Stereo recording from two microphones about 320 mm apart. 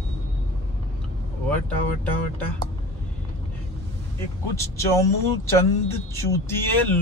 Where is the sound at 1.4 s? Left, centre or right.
Centre.